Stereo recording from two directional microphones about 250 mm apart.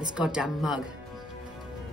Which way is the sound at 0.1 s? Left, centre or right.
Centre.